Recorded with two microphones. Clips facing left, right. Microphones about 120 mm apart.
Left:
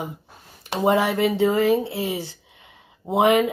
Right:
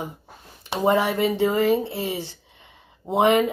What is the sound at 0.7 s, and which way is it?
Speech, 5° left (ahead or behind).